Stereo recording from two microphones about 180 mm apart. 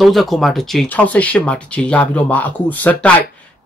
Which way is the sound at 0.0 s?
Centre (ahead or behind).